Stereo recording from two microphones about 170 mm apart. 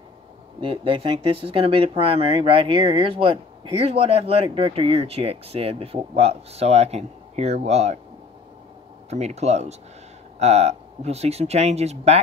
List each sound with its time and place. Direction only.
0.6 s speech: 30° right (ahead or behind)
9.1 s speech: 40° right (ahead or behind)